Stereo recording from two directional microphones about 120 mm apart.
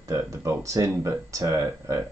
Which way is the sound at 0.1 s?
25° right (ahead or behind).